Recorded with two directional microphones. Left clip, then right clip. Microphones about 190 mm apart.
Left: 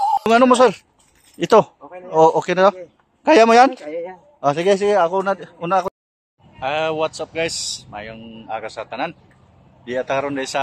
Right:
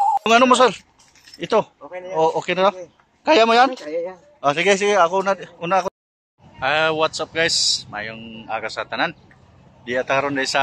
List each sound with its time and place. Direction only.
0.2 s speech: 35° left (ahead or behind)
1.4 s speech: 50° left (ahead or behind)
3.7 s speech: centre (ahead or behind)
4.4 s a man's voice: 30° left (ahead or behind)
6.6 s speech: centre (ahead or behind)